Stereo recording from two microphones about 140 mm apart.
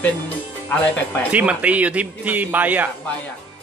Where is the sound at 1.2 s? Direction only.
10° right (ahead or behind).